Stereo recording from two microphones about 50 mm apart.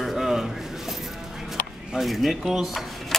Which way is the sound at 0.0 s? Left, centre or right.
Centre.